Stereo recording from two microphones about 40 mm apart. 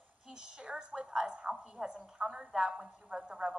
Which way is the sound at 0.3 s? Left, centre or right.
Right.